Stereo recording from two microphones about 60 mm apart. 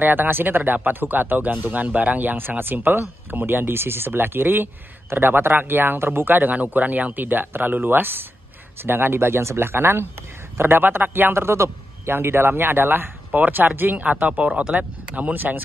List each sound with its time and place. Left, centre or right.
0.0 s speech: right